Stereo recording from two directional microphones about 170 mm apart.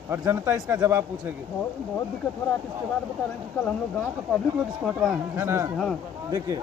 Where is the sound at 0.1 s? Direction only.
15° right (ahead or behind).